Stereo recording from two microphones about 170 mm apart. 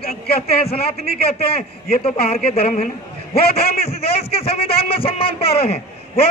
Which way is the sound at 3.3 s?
65° left (ahead or behind).